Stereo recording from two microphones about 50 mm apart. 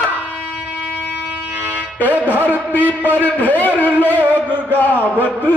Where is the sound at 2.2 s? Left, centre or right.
Left.